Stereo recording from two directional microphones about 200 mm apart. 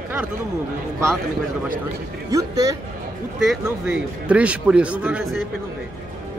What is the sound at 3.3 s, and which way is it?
A man's voice, centre (ahead or behind).